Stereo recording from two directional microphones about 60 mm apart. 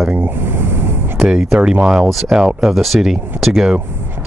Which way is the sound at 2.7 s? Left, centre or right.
Centre.